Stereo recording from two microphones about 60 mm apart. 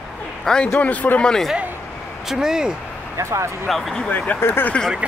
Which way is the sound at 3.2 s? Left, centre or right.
Right.